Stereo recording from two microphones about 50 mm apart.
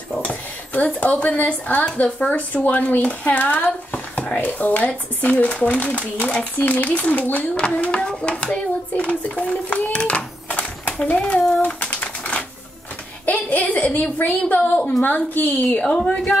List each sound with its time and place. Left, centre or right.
0.1 s a sound: left
1.9 s speech: left
4.4 s a woman's voice: left
11.6 s typewriter: left
13.2 s a sound: left
14.1 s a woman's voice: left
15.8 s speech: left